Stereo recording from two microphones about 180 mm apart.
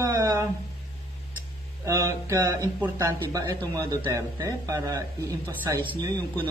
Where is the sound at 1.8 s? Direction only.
20° right (ahead or behind).